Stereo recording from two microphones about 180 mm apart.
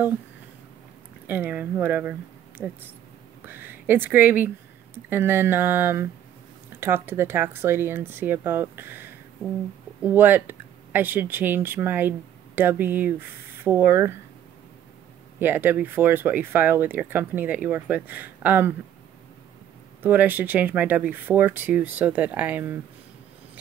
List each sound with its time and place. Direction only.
1.2 s speech: 10° right (ahead or behind)
15.3 s speech: 10° right (ahead or behind)
20.0 s speech: 10° right (ahead or behind)